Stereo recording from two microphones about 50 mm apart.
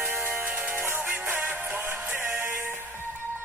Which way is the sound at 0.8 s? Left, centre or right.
Right.